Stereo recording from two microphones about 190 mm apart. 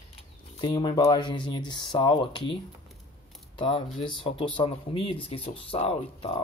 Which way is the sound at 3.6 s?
25° left (ahead or behind).